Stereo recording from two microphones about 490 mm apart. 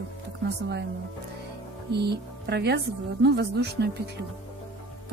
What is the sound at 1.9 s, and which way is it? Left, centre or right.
A woman's voice, centre.